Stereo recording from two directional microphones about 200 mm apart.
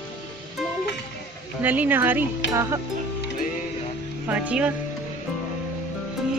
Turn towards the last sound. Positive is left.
turn(degrees=-5)  # may be behind; listen again after turning